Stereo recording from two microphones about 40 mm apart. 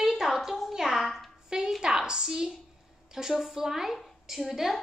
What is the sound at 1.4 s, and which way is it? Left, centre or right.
A woman's voice, centre.